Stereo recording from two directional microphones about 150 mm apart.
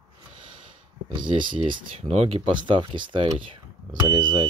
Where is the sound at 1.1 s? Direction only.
30° right (ahead or behind).